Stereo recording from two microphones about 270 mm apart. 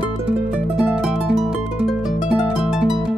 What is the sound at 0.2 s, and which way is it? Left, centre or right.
Music, centre.